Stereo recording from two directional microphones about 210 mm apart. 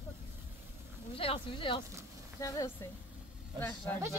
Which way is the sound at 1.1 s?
25° left (ahead or behind).